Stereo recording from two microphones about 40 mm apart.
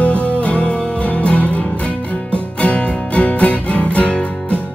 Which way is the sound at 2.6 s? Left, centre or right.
Left.